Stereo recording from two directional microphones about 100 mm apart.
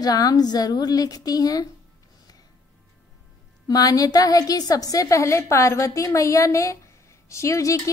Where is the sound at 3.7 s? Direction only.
40° left (ahead or behind).